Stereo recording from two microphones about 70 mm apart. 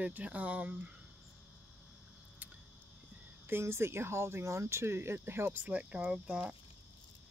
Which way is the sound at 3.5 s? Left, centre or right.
Right.